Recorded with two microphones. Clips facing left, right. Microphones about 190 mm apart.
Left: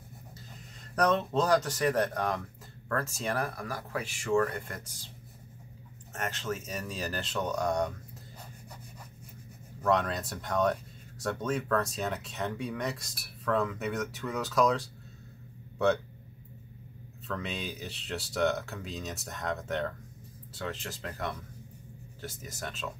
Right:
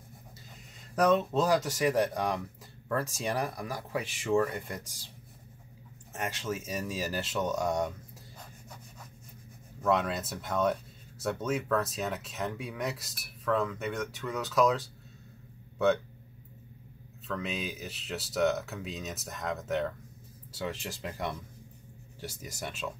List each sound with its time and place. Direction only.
0.9 s speech: 10° right (ahead or behind)
6.1 s speech: 15° right (ahead or behind)
9.8 s speech: 5° right (ahead or behind)
17.3 s speech: centre (ahead or behind)
20.5 s speech: 10° right (ahead or behind)